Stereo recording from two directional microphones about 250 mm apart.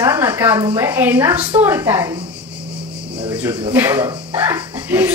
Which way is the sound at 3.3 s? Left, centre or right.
Centre.